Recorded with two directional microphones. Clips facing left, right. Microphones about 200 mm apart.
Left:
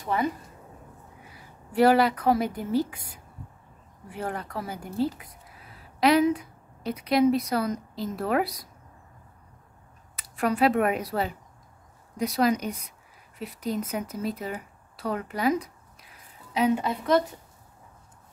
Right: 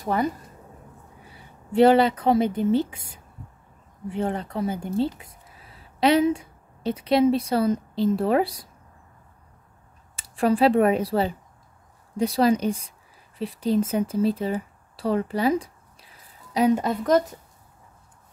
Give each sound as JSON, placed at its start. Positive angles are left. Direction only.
{"t": 0.0, "sound": "speech", "side_deg": -40}
{"t": 1.3, "sound": "speech", "side_deg": -25}
{"t": 10.1, "sound": "speech", "side_deg": -30}
{"t": 16.5, "sound": "a woman's voice", "side_deg": -40}